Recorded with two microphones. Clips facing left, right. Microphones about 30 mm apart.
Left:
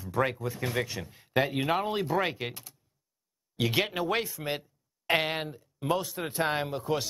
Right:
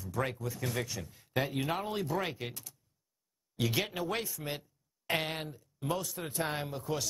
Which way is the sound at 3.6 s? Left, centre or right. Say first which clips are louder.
Left 5 dB; left.